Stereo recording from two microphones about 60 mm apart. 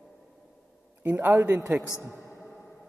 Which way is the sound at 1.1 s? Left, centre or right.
Right.